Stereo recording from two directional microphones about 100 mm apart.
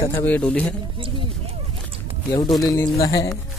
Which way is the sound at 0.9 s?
60° right (ahead or behind).